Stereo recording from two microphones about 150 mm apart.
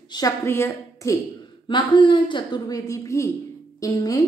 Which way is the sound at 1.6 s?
30° left (ahead or behind).